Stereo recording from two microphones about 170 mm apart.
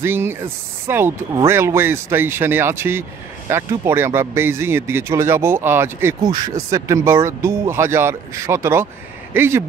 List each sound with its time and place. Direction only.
0.0 s speech: 15° right (ahead or behind)